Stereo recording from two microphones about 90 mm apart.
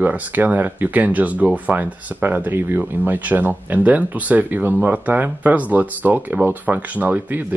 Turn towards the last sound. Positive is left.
turn(degrees=-20)  # may be behind; listen again after turning